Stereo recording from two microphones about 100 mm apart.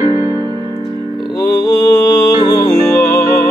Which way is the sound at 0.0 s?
40° right (ahead or behind).